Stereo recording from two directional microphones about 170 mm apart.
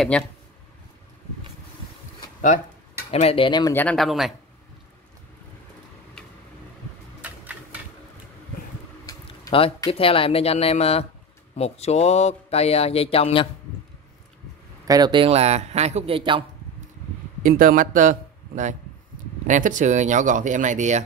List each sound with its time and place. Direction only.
0.1 s speech: 5° left (ahead or behind)
3.1 s speech: 35° left (ahead or behind)
3.7 s speech: 5° left (ahead or behind)
7.2 s a sound: 10° right (ahead or behind)
9.0 s a sound: 25° left (ahead or behind)
9.8 s speech: 35° left (ahead or behind)
14.9 s speech: 25° right (ahead or behind)
17.4 s speech: 55° right (ahead or behind)